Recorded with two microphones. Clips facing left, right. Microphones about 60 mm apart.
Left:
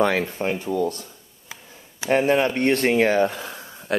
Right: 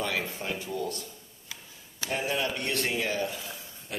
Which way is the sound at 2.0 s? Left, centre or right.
Left.